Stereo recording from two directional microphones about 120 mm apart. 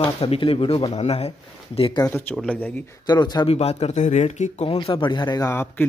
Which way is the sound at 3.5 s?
60° left (ahead or behind).